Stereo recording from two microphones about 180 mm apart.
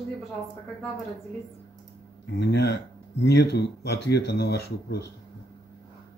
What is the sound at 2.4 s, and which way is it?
Speech, 65° left (ahead or behind).